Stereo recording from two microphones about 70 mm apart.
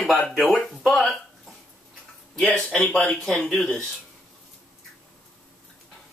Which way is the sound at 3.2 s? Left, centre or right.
Centre.